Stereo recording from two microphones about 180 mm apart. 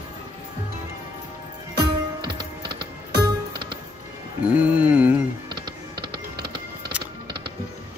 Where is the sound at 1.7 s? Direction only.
25° right (ahead or behind).